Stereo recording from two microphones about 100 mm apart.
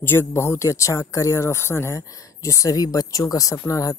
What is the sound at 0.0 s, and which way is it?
Speech, 25° left (ahead or behind).